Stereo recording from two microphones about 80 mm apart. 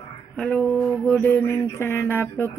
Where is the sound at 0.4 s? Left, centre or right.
Centre.